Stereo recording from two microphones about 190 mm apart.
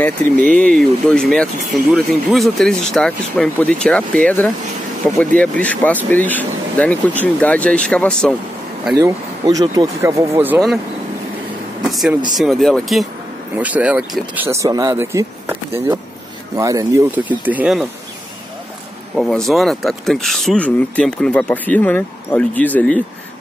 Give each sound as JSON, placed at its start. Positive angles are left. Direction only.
{"t": 0.5, "sound": "speech", "side_deg": 5}
{"t": 8.9, "sound": "speech", "side_deg": -20}
{"t": 11.8, "sound": "speech", "side_deg": 0}
{"t": 19.1, "sound": "speech", "side_deg": 0}